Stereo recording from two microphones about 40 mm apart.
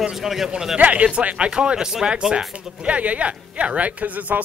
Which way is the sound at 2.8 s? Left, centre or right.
Right.